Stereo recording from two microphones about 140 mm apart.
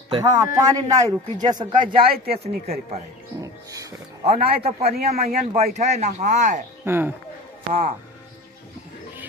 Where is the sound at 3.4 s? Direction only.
25° right (ahead or behind).